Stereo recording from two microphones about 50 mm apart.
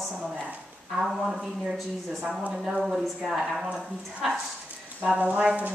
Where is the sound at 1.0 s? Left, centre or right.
Centre.